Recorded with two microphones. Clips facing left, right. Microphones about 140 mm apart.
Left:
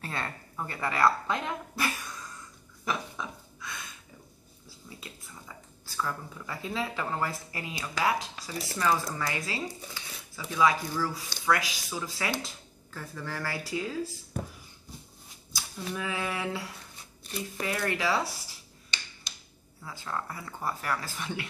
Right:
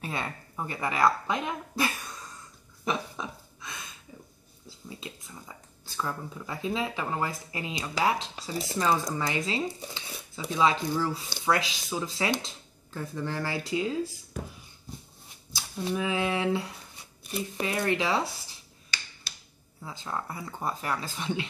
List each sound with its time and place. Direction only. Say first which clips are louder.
0.0 s speech: right 2 dB; 15° right (ahead or behind)
2.8 s dog: right 2 dB; 20° right (ahead or behind)
4.6 s a sound: right 5 dB; 25° right (ahead or behind)
5.9 s speech: right 1 dB; 20° right (ahead or behind)
15.5 s speech: right 5 dB; 25° right (ahead or behind)
19.8 s speech: right 1 dB; 20° right (ahead or behind)